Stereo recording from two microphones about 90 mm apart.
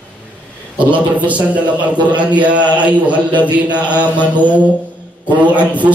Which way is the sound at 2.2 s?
15° right (ahead or behind).